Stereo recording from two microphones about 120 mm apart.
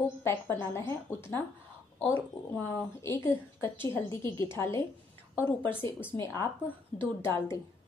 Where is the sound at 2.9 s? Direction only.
25° left (ahead or behind).